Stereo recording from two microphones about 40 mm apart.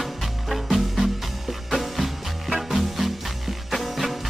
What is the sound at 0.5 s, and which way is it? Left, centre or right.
Music, centre.